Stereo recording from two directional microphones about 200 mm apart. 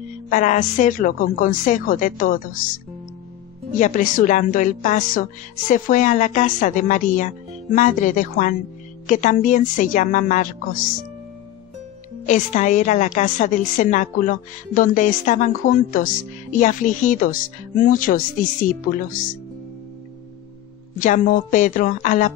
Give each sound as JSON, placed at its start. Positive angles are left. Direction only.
{"t": 0.3, "sound": "a woman's voice", "side_deg": 40}
{"t": 3.8, "sound": "a woman's voice", "side_deg": 40}
{"t": 12.3, "sound": "a woman's voice", "side_deg": 35}
{"t": 21.0, "sound": "a woman's voice", "side_deg": 40}